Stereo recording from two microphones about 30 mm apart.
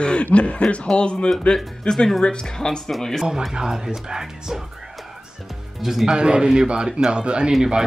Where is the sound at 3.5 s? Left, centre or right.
Right.